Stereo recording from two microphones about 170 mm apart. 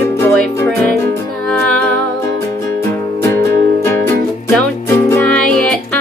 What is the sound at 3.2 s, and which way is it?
Music, 15° left (ahead or behind).